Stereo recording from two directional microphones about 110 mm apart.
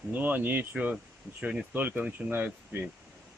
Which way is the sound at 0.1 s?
15° right (ahead or behind).